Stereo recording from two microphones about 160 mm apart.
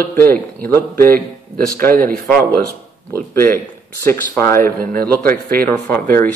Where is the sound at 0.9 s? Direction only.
65° right (ahead or behind).